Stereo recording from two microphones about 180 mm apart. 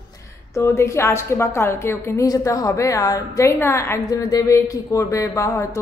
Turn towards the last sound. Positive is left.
turn(degrees=15)  # may be behind; listen again after turning